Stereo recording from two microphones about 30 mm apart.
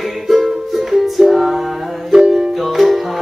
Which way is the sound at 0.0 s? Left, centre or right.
Centre.